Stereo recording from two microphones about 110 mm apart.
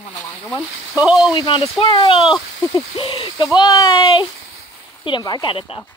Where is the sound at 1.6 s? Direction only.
50° left (ahead or behind).